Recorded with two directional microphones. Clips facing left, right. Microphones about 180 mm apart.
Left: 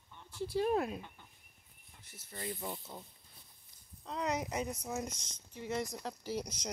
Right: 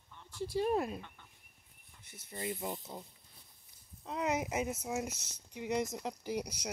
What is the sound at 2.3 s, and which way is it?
Speech, 20° right (ahead or behind).